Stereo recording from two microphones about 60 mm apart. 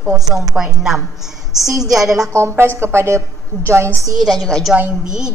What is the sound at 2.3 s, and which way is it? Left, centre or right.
A woman's voice, right.